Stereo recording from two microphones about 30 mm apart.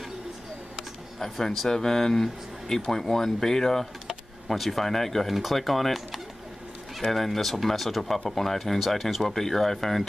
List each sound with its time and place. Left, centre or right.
1.7 s speech: centre
4.5 s speech: centre
5.3 s speech: centre